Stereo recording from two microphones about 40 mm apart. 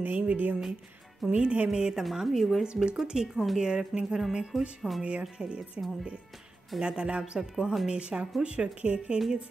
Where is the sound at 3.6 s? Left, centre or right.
Centre.